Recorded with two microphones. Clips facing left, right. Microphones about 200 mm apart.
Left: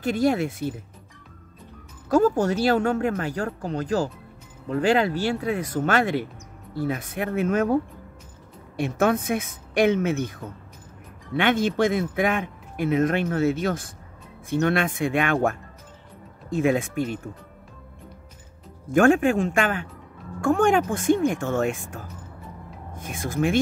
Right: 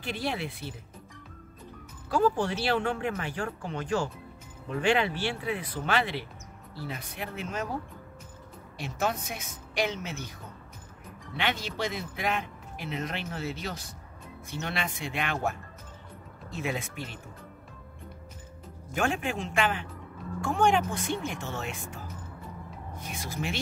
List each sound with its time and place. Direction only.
0.0 s a man's voice: 45° left (ahead or behind)
2.0 s a man's voice: 45° left (ahead or behind)
11.3 s a man's voice: 50° left (ahead or behind)
18.9 s a man's voice: 50° left (ahead or behind)